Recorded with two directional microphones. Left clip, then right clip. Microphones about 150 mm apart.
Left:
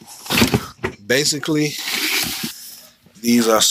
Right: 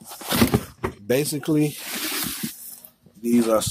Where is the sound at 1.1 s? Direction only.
25° right (ahead or behind).